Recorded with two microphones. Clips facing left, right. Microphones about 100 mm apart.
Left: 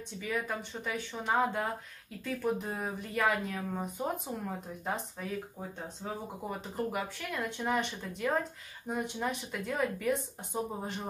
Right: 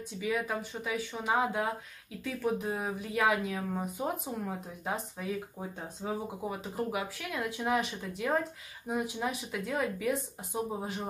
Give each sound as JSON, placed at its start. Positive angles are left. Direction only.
{"t": 0.2, "sound": "speech", "side_deg": -5}